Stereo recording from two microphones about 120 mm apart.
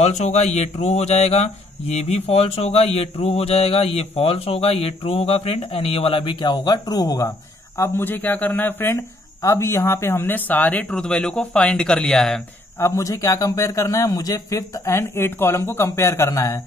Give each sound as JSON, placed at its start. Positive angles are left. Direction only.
{"t": 0.0, "sound": "speech", "side_deg": 70}
{"t": 12.7, "sound": "a man's voice", "side_deg": 25}